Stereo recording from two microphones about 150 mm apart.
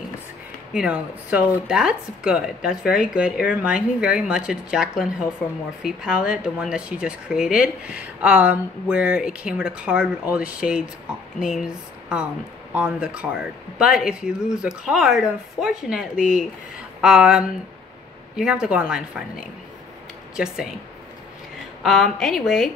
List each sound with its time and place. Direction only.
0.7 s speech: 5° right (ahead or behind)
16.2 s speech: 60° left (ahead or behind)
17.0 s speech: 5° right (ahead or behind)
21.8 s speech: centre (ahead or behind)